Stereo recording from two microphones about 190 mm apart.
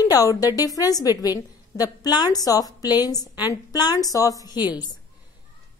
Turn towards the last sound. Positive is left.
turn(degrees=-5)  # may be behind; listen again after turning